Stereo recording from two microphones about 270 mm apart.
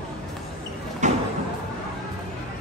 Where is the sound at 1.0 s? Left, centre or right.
Right.